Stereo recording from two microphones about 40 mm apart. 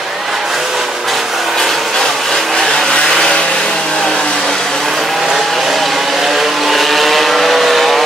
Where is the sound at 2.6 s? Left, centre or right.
Centre.